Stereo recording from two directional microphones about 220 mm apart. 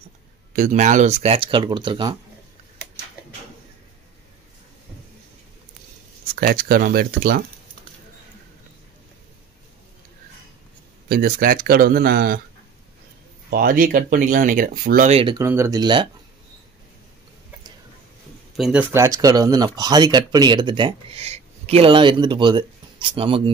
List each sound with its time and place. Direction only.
0.5 s speech: 35° right (ahead or behind)
6.3 s speech: 40° right (ahead or behind)
11.1 s speech: 40° right (ahead or behind)
13.5 s speech: 40° right (ahead or behind)
15.3 s speech: 15° right (ahead or behind)
18.6 s speech: 5° right (ahead or behind); by 23.5 s 25° right (ahead or behind)